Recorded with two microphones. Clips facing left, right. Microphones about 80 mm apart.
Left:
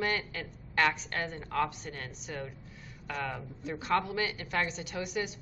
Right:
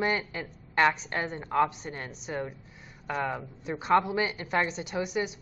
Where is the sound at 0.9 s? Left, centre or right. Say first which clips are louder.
Right 3 dB; right.